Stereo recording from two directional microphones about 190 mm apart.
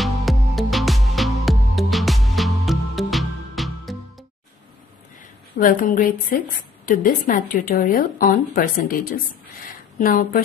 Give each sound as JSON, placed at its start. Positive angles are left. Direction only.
{"t": 0.0, "sound": "music", "side_deg": 0}
{"t": 5.6, "sound": "a woman's voice", "side_deg": 45}